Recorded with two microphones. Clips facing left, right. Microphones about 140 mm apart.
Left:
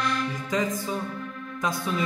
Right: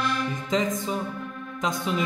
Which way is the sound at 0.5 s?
20° right (ahead or behind).